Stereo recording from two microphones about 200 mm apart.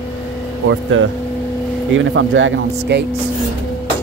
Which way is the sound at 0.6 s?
75° right (ahead or behind).